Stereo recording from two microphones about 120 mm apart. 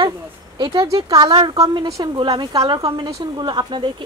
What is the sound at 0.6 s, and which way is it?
Speech, 35° right (ahead or behind).